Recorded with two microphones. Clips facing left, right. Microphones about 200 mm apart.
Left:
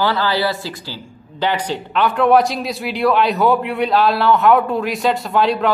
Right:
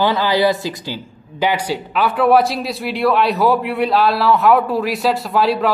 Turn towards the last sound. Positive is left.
turn(degrees=0)  # may be behind; listen again after turning